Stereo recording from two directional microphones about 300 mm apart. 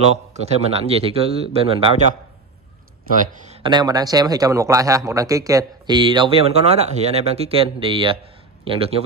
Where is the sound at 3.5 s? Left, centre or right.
Centre.